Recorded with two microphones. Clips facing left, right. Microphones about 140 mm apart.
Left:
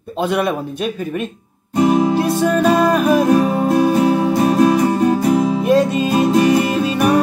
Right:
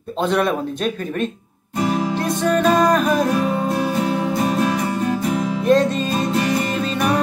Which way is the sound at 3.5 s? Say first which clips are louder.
Left 6 dB; 25° left (ahead or behind).